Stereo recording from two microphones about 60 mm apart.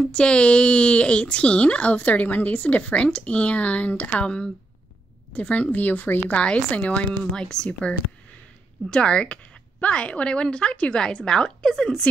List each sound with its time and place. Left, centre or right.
0.0 s speech: centre; by 6.3 s left
6.3 s a woman's voice: centre
8.9 s a woman's voice: centre